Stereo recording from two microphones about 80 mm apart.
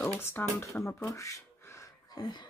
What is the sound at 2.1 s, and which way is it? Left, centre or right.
Speech, left.